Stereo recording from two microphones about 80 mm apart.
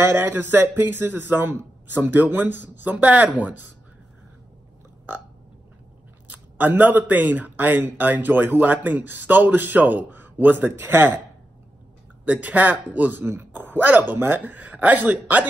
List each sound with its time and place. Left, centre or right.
0.0 s speech: right
6.2 s speech: right
12.3 s speech: centre